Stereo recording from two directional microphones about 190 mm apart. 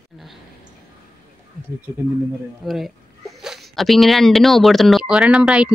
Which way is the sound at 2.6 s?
Centre (ahead or behind).